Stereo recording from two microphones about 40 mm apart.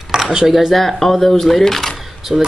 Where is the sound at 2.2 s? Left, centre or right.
Centre.